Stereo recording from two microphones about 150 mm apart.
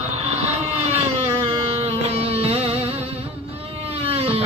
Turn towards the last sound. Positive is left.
turn(degrees=-40)  # may be behind; listen again after turning